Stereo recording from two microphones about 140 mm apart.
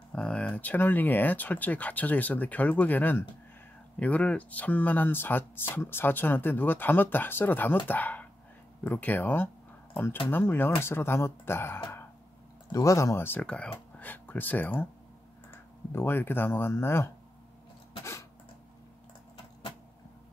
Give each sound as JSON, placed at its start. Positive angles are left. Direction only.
{"t": 0.1, "sound": "speech", "side_deg": 5}
{"t": 15.9, "sound": "speech", "side_deg": 15}